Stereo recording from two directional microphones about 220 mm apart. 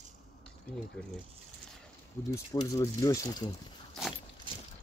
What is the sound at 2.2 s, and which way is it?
Speech, 15° left (ahead or behind).